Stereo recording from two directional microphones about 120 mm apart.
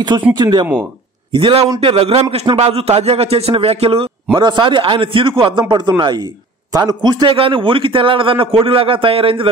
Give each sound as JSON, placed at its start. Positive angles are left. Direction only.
{"t": 0.4, "sound": "a man's voice", "side_deg": -35}
{"t": 1.3, "sound": "a man's voice", "side_deg": -50}
{"t": 4.4, "sound": "a man's voice", "side_deg": -40}